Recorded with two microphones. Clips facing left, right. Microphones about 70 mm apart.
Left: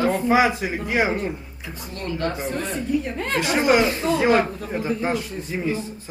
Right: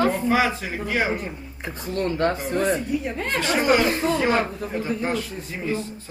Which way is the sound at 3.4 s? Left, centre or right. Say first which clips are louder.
Left 1 dB; centre.